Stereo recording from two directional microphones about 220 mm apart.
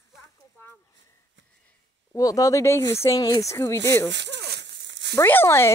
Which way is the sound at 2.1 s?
15° left (ahead or behind).